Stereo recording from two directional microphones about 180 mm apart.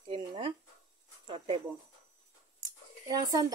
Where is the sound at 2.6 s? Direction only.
20° right (ahead or behind).